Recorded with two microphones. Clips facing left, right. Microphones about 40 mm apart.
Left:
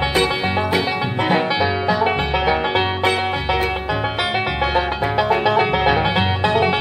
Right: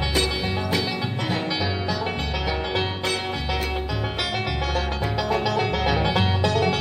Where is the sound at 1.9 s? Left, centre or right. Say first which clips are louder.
Left 9 dB; left.